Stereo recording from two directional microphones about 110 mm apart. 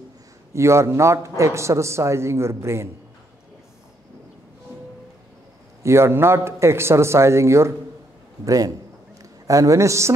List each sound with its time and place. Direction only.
0.5 s a man's voice: 25° right (ahead or behind)
5.8 s a man's voice: 25° right (ahead or behind)